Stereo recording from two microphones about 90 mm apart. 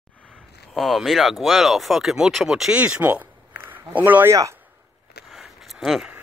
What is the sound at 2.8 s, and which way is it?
Speech, 20° right (ahead or behind).